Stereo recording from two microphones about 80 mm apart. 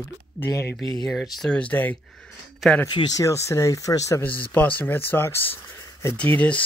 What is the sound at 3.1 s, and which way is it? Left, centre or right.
Speech, left.